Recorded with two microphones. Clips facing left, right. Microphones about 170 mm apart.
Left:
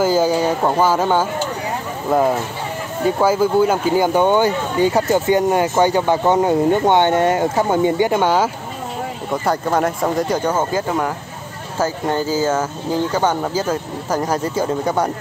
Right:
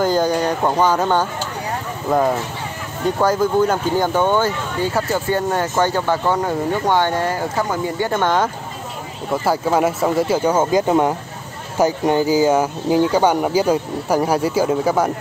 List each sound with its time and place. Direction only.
0.0 s speech: 5° left (ahead or behind)
3.2 s speech: 10° left (ahead or behind); by 8.1 s 25° left (ahead or behind)
8.1 s speech: 10° left (ahead or behind)
9.3 s speech: 5° right (ahead or behind)
10.9 s speech: 20° right (ahead or behind); by 15.0 s 5° right (ahead or behind)